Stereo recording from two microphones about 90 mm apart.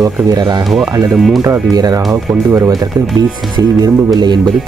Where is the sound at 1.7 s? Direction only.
45° right (ahead or behind).